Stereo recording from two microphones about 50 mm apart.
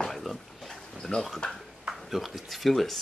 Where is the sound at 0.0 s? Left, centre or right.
Centre.